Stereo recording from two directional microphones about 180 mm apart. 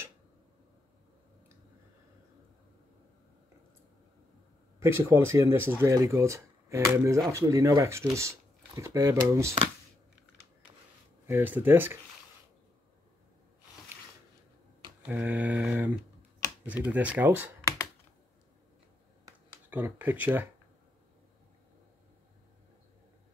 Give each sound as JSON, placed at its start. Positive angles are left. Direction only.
{"t": 4.7, "sound": "speech", "side_deg": -15}
{"t": 11.2, "sound": "speech", "side_deg": -10}
{"t": 15.0, "sound": "speech", "side_deg": -10}
{"t": 19.7, "sound": "speech", "side_deg": -10}